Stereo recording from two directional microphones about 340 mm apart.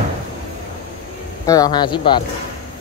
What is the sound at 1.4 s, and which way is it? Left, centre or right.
Speech, centre.